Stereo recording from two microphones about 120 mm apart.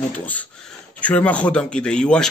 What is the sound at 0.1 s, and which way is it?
Speech, 10° left (ahead or behind).